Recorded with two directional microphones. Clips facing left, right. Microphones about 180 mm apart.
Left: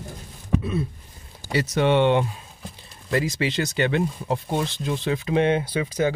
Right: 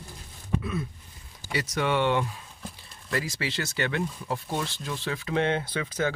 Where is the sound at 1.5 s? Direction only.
25° left (ahead or behind).